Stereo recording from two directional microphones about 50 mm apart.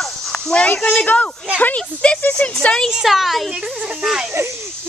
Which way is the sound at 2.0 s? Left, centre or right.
Left.